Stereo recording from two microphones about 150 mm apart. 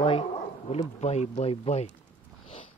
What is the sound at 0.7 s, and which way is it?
Speech, 45° left (ahead or behind).